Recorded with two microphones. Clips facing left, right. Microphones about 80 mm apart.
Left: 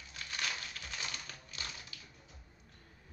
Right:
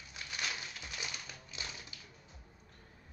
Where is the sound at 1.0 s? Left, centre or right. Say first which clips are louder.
Even; centre.